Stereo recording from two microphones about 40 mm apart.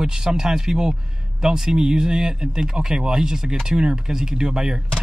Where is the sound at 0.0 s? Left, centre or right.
Centre.